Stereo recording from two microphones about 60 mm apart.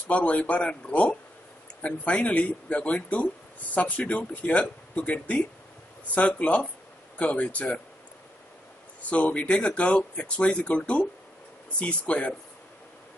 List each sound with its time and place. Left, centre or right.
0.1 s speech: left
9.1 s speech: left